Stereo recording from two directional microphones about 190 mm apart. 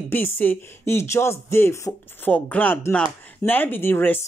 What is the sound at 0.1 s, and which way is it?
Speech, 10° left (ahead or behind).